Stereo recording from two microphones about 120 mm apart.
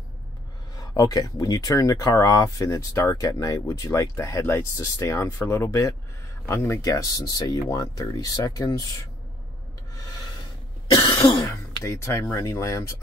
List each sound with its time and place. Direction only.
0.7 s speech: 30° left (ahead or behind)
10.9 s cough: 30° left (ahead or behind)
11.8 s speech: 25° left (ahead or behind)